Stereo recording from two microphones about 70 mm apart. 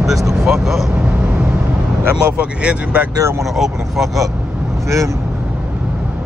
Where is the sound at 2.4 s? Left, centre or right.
Centre.